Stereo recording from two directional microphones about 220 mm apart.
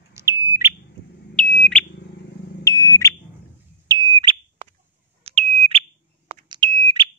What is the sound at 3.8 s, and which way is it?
Smoke detector, 20° right (ahead or behind).